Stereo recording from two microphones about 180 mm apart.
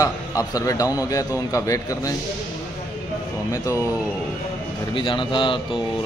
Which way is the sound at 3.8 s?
10° right (ahead or behind).